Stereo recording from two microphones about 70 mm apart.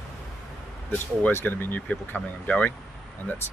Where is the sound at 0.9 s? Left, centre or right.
Left.